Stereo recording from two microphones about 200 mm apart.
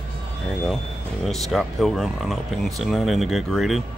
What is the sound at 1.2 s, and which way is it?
Speech, centre (ahead or behind).